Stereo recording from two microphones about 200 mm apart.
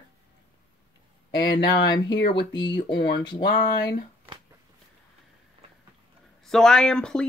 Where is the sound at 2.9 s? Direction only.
60° left (ahead or behind).